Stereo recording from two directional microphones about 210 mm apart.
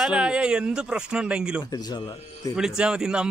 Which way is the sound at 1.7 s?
20° left (ahead or behind).